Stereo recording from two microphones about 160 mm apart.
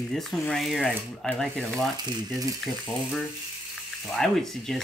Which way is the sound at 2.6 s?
Centre (ahead or behind).